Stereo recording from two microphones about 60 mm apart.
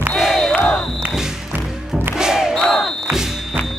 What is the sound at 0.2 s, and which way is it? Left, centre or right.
Battle cry, centre.